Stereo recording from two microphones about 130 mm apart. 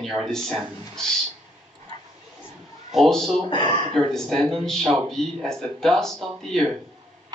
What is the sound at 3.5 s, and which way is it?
Speech, 35° left (ahead or behind).